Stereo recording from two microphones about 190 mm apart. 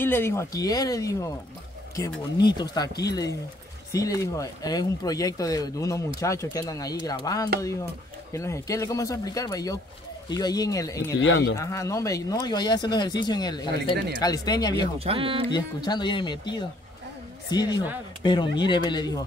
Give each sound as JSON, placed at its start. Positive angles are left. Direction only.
{"t": 0.0, "sound": "speech", "side_deg": 10}
{"t": 11.1, "sound": "speech", "side_deg": 70}
{"t": 11.5, "sound": "speech", "side_deg": 15}
{"t": 13.9, "sound": "speech", "side_deg": -60}
{"t": 14.2, "sound": "speech", "side_deg": 20}
{"t": 15.0, "sound": "speech", "side_deg": -30}
{"t": 15.5, "sound": "speech", "side_deg": 20}